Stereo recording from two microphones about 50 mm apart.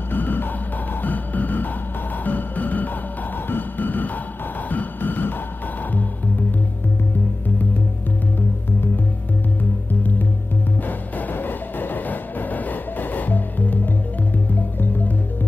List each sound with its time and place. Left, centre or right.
0.1 s music: left
10.9 s music: left